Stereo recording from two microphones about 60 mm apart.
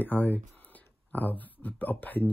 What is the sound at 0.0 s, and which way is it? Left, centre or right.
Speech, left.